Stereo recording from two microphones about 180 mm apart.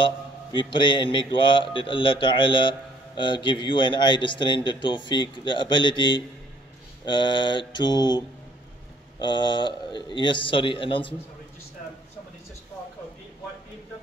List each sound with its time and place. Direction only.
0.0 s speech: 25° left (ahead or behind)
9.2 s speech: 25° left (ahead or behind)